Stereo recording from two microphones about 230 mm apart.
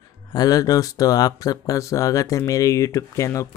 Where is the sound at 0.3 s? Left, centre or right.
Centre.